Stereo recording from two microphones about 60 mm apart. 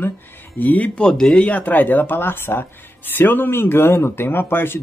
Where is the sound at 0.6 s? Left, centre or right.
Left.